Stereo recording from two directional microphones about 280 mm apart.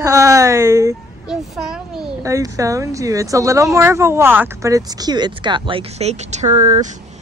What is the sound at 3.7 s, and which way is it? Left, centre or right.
Speech, centre.